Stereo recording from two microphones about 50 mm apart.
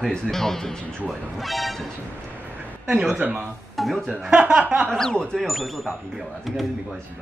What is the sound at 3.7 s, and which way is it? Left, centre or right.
Speech, centre.